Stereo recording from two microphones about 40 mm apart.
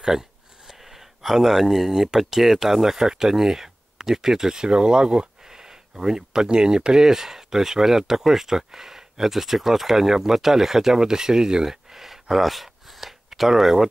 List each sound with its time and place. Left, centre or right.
0.7 s speech: centre